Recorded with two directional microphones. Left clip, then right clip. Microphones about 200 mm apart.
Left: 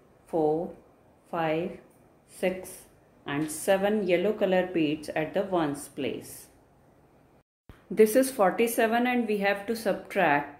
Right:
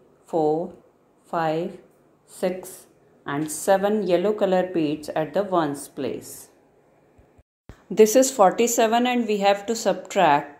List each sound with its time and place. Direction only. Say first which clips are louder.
0.3 s a woman's voice: right 4 dB; 15° right (ahead or behind)
7.9 s a woman's voice: right 6 dB; 15° right (ahead or behind)